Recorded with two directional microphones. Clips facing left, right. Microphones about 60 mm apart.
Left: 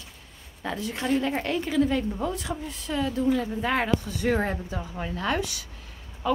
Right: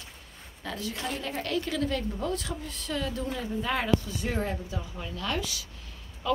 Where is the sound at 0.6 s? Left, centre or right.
Left.